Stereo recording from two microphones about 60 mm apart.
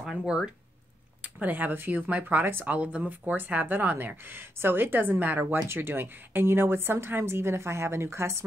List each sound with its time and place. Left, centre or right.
0.0 s speech: centre
1.4 s a woman's voice: right